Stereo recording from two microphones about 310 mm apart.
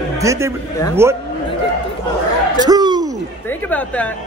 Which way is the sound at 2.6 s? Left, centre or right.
Centre.